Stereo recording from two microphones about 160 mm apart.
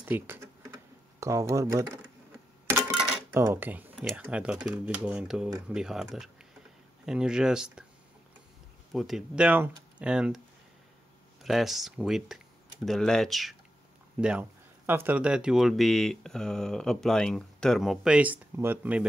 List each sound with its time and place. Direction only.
0.0 s speech: 10° right (ahead or behind)
3.3 s dishes: 15° right (ahead or behind)
4.0 s speech: 5° right (ahead or behind)
8.9 s speech: centre (ahead or behind)
11.4 s speech: centre (ahead or behind)
14.9 s speech: 15° right (ahead or behind)